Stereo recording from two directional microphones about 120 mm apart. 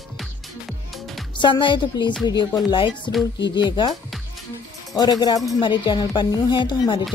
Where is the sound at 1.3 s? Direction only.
40° left (ahead or behind).